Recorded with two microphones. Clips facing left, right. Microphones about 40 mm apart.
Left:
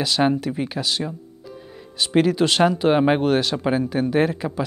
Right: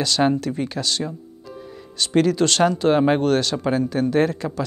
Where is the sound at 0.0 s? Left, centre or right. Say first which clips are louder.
Even; centre.